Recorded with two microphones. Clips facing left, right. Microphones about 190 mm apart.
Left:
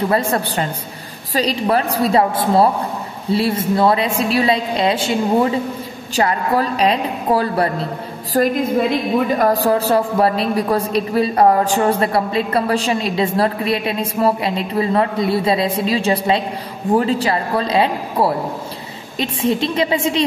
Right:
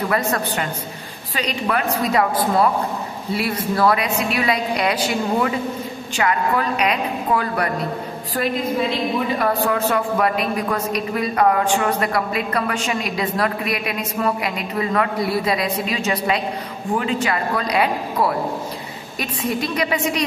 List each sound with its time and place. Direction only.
0.1 s a woman's voice: 30° left (ahead or behind)
8.3 s a woman's voice: 45° left (ahead or behind); by 20.2 s 25° left (ahead or behind)